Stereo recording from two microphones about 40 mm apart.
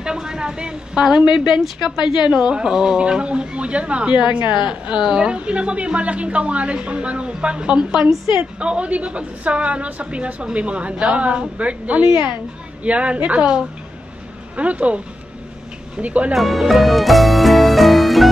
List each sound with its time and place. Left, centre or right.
0.0 s a woman's voice: centre; by 13.5 s right
14.6 s a woman's voice: right
16.0 s a woman's voice: right
16.3 s music: centre